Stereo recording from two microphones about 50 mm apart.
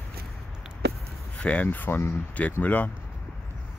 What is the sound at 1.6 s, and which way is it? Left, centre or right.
Speech, left.